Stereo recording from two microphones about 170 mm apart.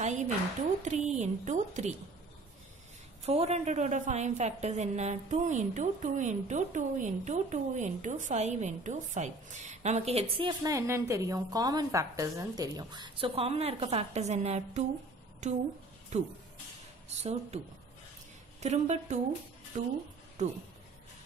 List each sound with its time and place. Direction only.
0.0 s a woman's voice: 45° right (ahead or behind)
3.3 s a woman's voice: 40° right (ahead or behind)
10.6 s a woman's voice: 15° right (ahead or behind); by 17.6 s 40° right (ahead or behind)
18.6 s a woman's voice: 40° right (ahead or behind)